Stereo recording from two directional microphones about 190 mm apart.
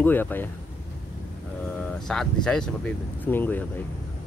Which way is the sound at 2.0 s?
5° left (ahead or behind).